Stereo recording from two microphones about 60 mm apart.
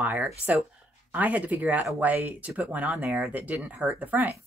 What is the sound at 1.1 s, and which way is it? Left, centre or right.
A woman's voice, right.